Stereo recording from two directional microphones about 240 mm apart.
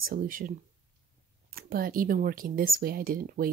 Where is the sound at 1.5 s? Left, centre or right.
Right.